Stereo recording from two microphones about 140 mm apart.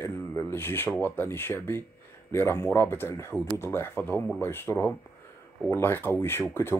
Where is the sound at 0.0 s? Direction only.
20° left (ahead or behind).